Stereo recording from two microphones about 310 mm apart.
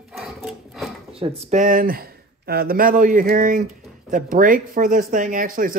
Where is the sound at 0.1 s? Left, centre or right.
Centre.